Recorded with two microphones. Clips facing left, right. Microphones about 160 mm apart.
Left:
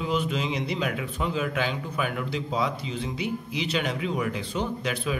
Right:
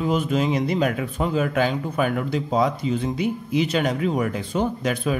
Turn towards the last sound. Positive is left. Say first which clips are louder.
# right 5 dB
turn(degrees=-45)  # may be behind; listen again after turning